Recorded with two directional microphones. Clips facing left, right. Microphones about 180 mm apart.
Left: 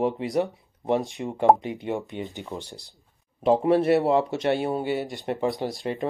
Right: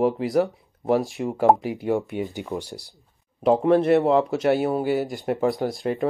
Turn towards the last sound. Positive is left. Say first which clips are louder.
# right 4 dB
turn(degrees=0)  # may be behind; listen again after turning